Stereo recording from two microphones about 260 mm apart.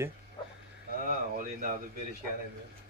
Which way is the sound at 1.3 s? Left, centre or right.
Right.